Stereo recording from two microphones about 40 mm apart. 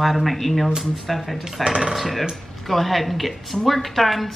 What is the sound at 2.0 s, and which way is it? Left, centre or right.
Speech, centre.